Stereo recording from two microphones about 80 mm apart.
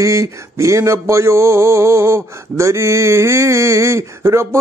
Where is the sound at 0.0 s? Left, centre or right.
Right.